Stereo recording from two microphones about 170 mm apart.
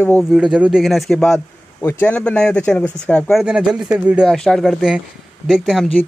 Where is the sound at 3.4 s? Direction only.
5° right (ahead or behind).